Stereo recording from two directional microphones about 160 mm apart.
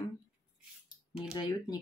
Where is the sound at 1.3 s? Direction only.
25° left (ahead or behind).